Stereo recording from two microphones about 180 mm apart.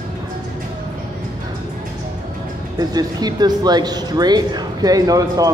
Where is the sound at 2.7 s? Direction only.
20° right (ahead or behind).